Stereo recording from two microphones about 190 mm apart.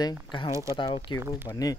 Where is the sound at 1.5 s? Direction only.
20° left (ahead or behind).